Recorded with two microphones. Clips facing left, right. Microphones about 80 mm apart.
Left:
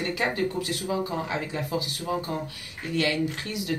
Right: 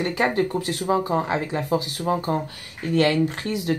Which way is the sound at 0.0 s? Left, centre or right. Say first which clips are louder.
Right 5 dB; right.